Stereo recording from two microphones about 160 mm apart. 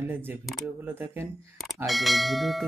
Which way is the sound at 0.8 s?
10° right (ahead or behind).